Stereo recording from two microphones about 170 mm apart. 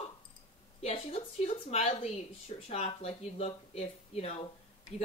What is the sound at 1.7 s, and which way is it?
Speech, 35° left (ahead or behind).